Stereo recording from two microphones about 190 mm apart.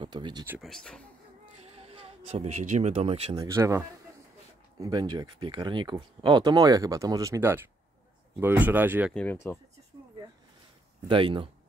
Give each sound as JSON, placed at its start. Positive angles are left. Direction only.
{"t": 0.0, "sound": "speech", "side_deg": -25}
{"t": 0.6, "sound": "speech", "side_deg": 5}
{"t": 1.6, "sound": "speech", "side_deg": -30}
{"t": 3.3, "sound": "speech", "side_deg": -15}
{"t": 9.1, "sound": "speech", "side_deg": 10}
{"t": 11.1, "sound": "speech", "side_deg": -25}